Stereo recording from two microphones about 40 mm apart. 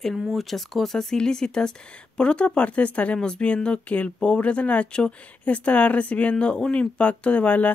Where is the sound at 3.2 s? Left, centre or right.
Left.